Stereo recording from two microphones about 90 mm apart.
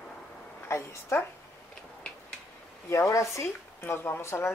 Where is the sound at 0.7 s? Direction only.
30° left (ahead or behind).